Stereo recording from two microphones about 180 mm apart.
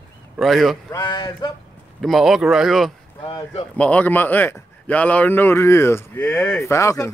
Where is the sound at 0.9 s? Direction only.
25° left (ahead or behind).